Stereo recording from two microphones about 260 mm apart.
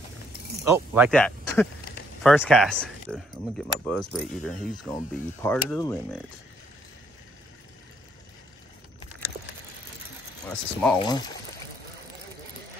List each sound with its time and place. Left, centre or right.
0.7 s mechanisms: centre
1.1 s speech: centre
10.4 s speech: centre
11.0 s speech: centre